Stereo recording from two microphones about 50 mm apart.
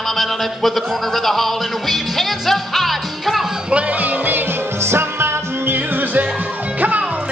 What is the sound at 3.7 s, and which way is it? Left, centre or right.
Music, right.